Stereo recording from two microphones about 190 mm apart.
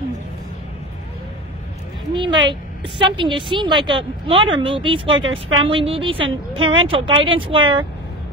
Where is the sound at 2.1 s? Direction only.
25° right (ahead or behind).